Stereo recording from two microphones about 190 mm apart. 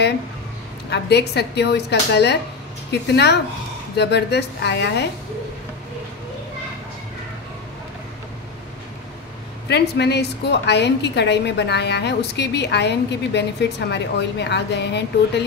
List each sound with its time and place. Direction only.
0.8 s a woman's voice: 60° left (ahead or behind)
9.7 s a woman's voice: 60° left (ahead or behind)